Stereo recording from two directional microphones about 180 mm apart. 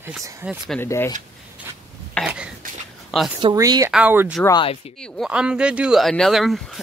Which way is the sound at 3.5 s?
20° right (ahead or behind).